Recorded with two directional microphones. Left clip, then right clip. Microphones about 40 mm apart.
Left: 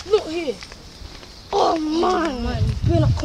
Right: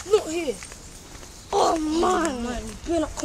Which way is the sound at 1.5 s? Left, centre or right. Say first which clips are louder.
Left 2 dB; centre.